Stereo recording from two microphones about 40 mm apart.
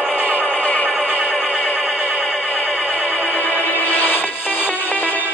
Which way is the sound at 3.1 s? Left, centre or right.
Left.